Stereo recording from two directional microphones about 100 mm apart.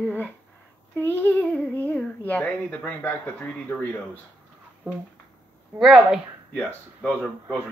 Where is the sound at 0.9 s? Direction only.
20° left (ahead or behind).